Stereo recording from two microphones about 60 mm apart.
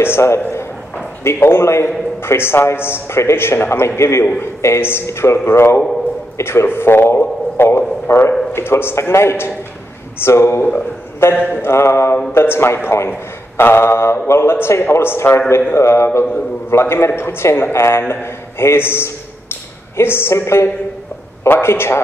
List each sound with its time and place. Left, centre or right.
0.0 s speech: left
10.6 s a man's voice: left
11.2 s a man's voice: left